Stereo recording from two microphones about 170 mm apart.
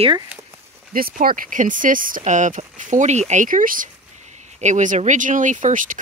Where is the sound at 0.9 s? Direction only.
60° right (ahead or behind).